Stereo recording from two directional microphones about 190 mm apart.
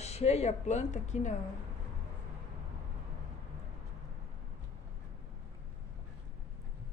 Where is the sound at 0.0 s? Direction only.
35° left (ahead or behind).